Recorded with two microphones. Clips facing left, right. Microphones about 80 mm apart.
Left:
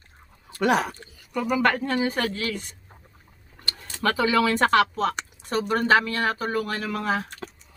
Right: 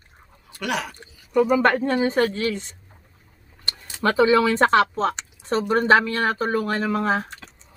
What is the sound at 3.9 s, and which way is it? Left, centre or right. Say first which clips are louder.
Speech: right 5 dB; right.